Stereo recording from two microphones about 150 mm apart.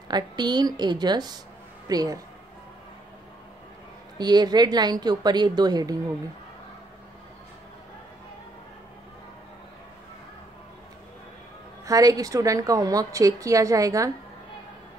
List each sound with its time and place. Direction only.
0.1 s a woman's voice: 30° right (ahead or behind)
4.2 s a woman's voice: 30° right (ahead or behind)
11.8 s a woman's voice: 25° right (ahead or behind)